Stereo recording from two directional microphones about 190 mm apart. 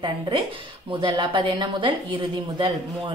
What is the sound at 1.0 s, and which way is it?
A woman's voice, 25° right (ahead or behind).